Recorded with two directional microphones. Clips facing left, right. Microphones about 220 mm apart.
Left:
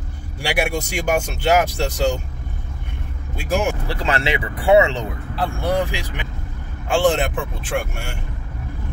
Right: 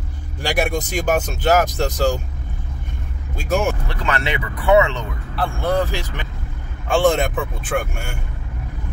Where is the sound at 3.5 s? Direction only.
10° left (ahead or behind).